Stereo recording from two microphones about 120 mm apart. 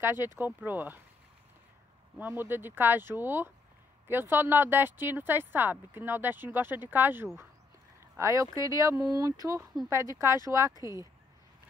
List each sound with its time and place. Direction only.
0.0 s speech: 20° right (ahead or behind)
2.1 s speech: 15° right (ahead or behind)
8.2 s speech: 25° right (ahead or behind)